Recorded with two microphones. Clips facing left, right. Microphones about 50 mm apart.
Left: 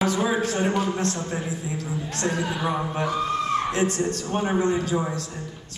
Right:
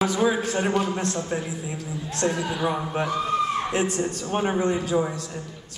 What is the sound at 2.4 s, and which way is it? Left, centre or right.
Speech, centre.